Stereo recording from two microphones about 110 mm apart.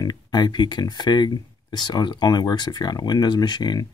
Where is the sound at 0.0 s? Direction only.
40° left (ahead or behind).